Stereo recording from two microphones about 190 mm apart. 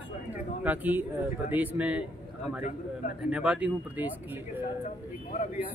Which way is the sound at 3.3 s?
5° right (ahead or behind).